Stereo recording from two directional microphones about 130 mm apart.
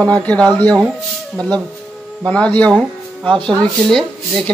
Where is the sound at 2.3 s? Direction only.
10° left (ahead or behind).